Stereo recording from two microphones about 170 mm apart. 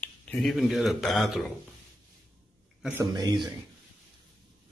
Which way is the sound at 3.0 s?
25° right (ahead or behind).